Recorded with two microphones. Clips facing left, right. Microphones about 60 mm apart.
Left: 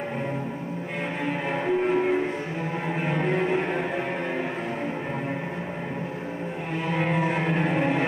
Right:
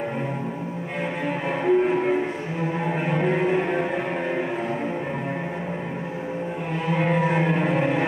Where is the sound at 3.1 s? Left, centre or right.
Centre.